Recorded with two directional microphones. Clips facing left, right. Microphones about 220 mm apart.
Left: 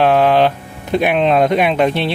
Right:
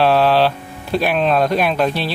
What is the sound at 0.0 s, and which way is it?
Speech, 15° left (ahead or behind).